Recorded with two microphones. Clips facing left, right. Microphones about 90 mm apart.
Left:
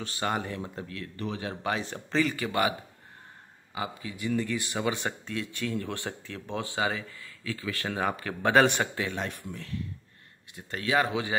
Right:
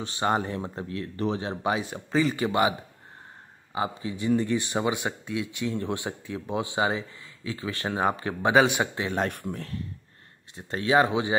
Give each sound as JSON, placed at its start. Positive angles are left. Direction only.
{"t": 0.0, "sound": "speech", "side_deg": -25}
{"t": 1.8, "sound": "speech", "side_deg": -10}
{"t": 2.2, "sound": "speech", "side_deg": -25}
{"t": 3.7, "sound": "speech", "side_deg": -30}
{"t": 4.9, "sound": "speech", "side_deg": -10}
{"t": 8.5, "sound": "speech", "side_deg": -5}
{"t": 9.1, "sound": "speech", "side_deg": -55}
{"t": 10.5, "sound": "speech", "side_deg": -25}